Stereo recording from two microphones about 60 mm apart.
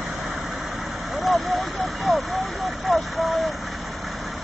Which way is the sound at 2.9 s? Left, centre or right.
Centre.